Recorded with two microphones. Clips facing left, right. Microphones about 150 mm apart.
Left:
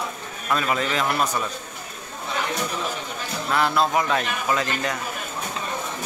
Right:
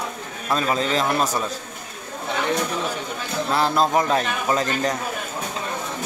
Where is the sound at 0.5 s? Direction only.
30° right (ahead or behind).